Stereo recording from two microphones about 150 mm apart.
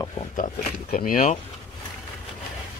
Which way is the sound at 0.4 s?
65° left (ahead or behind).